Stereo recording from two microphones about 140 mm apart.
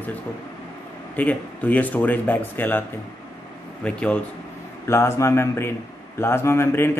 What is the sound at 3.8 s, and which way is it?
Speech, 5° left (ahead or behind).